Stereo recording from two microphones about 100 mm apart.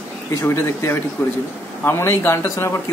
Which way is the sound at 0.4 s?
25° left (ahead or behind).